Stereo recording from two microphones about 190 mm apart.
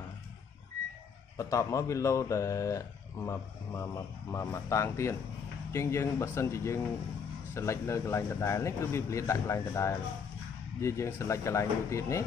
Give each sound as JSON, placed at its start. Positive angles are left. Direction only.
{"t": 1.4, "sound": "a man's voice", "side_deg": 15}